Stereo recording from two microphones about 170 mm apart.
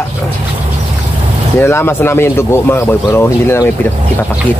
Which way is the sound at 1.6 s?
15° left (ahead or behind).